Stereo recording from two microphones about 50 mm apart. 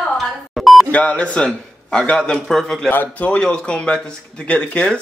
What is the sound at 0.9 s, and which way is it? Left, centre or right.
A man's voice, left.